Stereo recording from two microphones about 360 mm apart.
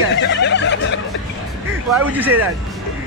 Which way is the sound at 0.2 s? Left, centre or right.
Left.